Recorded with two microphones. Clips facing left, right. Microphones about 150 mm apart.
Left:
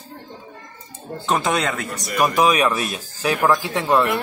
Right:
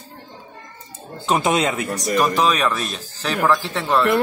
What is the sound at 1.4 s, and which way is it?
Speech, 20° right (ahead or behind).